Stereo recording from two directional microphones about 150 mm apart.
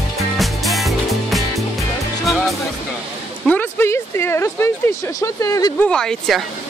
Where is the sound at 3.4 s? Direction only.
10° left (ahead or behind).